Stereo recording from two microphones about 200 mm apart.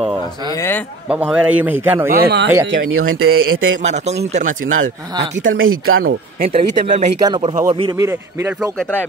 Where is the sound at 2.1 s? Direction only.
60° right (ahead or behind).